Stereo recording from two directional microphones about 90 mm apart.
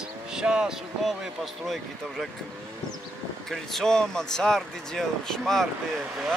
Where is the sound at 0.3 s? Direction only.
10° right (ahead or behind).